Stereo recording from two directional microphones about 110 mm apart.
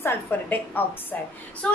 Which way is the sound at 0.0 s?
20° left (ahead or behind).